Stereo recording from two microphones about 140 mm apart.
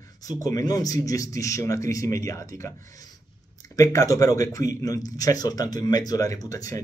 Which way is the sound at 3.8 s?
25° left (ahead or behind).